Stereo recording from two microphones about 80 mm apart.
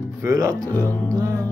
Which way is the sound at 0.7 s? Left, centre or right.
Left.